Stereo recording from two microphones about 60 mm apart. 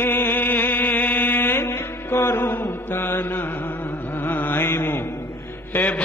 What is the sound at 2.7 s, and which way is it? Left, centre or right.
Mantra, left.